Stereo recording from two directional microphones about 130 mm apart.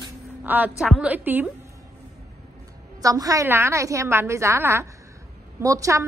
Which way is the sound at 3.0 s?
25° right (ahead or behind).